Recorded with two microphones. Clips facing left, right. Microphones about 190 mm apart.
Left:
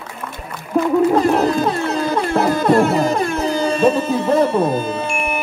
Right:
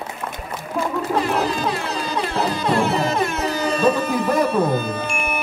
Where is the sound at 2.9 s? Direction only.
35° left (ahead or behind).